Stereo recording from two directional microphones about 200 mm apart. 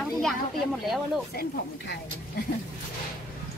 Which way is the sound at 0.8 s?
Centre (ahead or behind).